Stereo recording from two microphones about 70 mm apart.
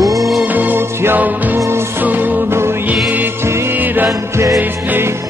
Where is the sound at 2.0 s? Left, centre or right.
Right.